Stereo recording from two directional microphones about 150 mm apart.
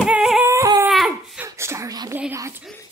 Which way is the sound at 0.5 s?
20° right (ahead or behind).